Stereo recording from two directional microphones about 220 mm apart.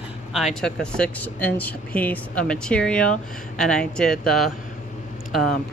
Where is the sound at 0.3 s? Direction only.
Centre (ahead or behind).